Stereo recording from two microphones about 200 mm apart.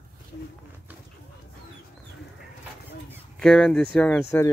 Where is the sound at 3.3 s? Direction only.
5° left (ahead or behind).